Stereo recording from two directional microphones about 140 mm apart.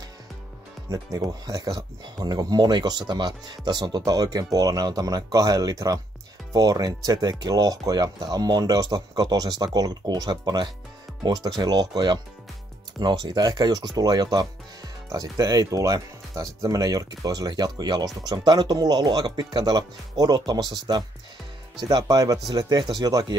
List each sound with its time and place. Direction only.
0.8 s speech: 25° right (ahead or behind)